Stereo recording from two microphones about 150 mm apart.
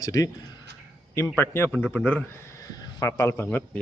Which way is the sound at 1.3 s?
15° left (ahead or behind).